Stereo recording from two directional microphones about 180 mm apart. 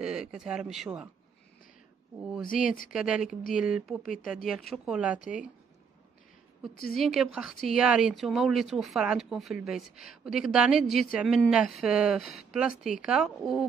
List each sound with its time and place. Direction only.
0.0 s a woman's voice: 5° right (ahead or behind)
2.4 s speech: 50° left (ahead or behind)
2.9 s a woman's voice: 5° right (ahead or behind)
4.0 s speech: 50° left (ahead or behind)
4.5 s a woman's voice: 5° right (ahead or behind)
6.8 s a woman's voice: centre (ahead or behind)